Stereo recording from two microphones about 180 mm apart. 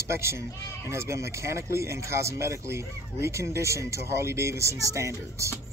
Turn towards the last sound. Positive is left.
turn(degrees=-15)  # may be behind; listen again after turning